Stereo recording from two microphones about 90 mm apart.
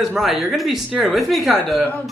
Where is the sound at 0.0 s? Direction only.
5° right (ahead or behind).